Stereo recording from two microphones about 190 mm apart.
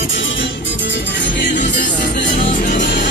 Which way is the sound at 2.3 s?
45° left (ahead or behind).